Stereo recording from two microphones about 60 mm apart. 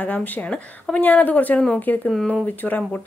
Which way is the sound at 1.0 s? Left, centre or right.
Left.